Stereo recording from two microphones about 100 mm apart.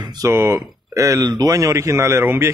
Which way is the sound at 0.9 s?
30° right (ahead or behind).